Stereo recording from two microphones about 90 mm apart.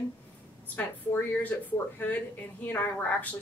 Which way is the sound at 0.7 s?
25° left (ahead or behind).